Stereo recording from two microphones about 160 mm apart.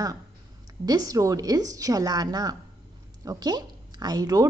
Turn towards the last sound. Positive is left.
turn(degrees=-25)  # may be behind; listen again after turning